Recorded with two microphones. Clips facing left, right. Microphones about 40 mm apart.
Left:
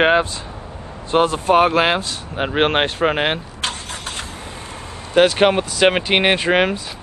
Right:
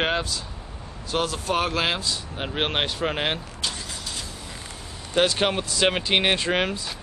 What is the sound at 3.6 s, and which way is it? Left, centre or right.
Vehicle, left.